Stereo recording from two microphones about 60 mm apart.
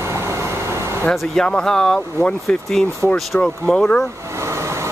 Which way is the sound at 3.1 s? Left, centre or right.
Centre.